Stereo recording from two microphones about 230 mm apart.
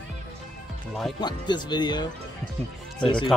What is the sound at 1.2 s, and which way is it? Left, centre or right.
Speech, centre.